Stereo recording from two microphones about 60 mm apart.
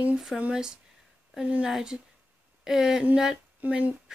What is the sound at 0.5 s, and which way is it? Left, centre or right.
Speech, centre.